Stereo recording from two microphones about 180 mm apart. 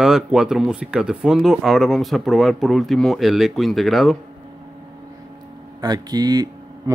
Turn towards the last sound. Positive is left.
turn(degrees=-20)  # may be behind; listen again after turning